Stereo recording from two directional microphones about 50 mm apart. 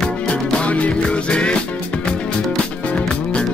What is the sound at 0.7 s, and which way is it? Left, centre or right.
Music, left.